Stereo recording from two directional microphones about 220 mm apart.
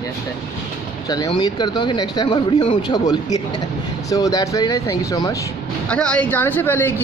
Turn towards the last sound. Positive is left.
turn(degrees=10)  # may be behind; listen again after turning